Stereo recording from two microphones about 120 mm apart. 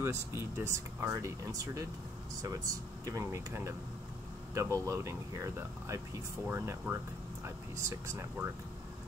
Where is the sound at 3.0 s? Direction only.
25° right (ahead or behind).